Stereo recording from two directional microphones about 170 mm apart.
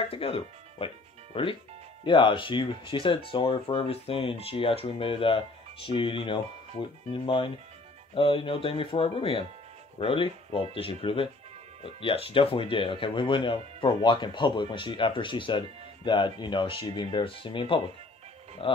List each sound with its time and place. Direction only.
0.0 s speech: 35° left (ahead or behind)